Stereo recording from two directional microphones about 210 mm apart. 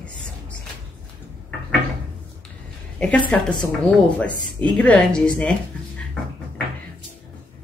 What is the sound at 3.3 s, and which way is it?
Speech, 5° left (ahead or behind).